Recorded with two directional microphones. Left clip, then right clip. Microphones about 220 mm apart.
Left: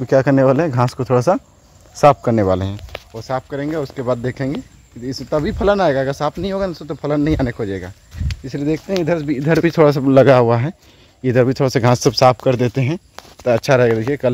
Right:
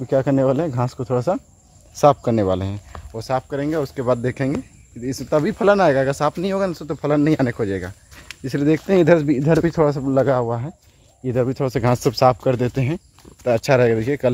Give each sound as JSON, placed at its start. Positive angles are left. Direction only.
{"t": 0.0, "sound": "speech", "side_deg": 20}
{"t": 2.0, "sound": "speech", "side_deg": 5}
{"t": 3.1, "sound": "speech", "side_deg": -5}
{"t": 8.5, "sound": "speech", "side_deg": -30}
{"t": 8.9, "sound": "speech", "side_deg": -45}
{"t": 9.8, "sound": "speech", "side_deg": 25}
{"t": 11.2, "sound": "speech", "side_deg": 20}